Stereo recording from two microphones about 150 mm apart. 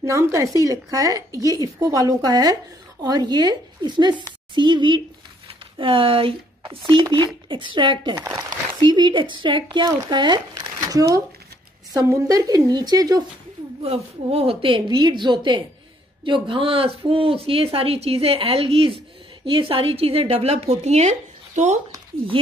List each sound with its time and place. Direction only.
0.0 s speech: 20° right (ahead or behind)
13.8 s speech: 45° right (ahead or behind)
22.3 s speech: 35° right (ahead or behind)